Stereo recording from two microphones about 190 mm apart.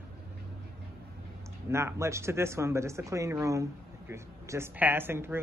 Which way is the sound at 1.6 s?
15° right (ahead or behind).